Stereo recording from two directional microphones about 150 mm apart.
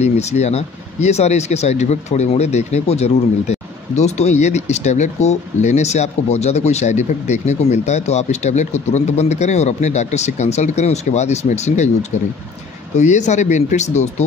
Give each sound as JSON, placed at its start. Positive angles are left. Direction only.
{"t": 0.0, "sound": "speech", "side_deg": 50}